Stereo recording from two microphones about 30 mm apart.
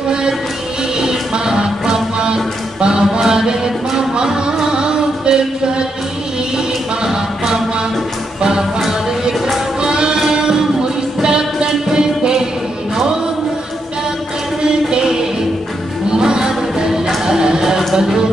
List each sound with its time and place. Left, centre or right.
0.9 s music: right
7.1 s music: centre
9.8 s music: right
14.6 s music: right